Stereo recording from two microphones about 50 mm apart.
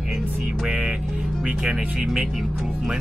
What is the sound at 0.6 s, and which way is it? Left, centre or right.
Speech, centre.